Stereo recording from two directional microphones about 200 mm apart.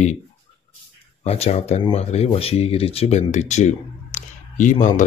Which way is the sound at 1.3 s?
30° left (ahead or behind).